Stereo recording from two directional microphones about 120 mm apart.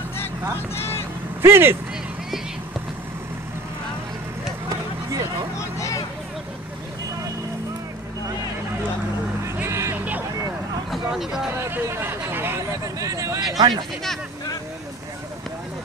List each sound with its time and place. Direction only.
0.7 s vehicle: 20° left (ahead or behind)
1.4 s speech: 20° right (ahead or behind)
4.6 s a sound: 30° right (ahead or behind)
5.6 s vehicle: 25° left (ahead or behind)
9.4 s music: 25° right (ahead or behind)
11.1 s speech: 5° right (ahead or behind)
11.5 s speech: 20° right (ahead or behind)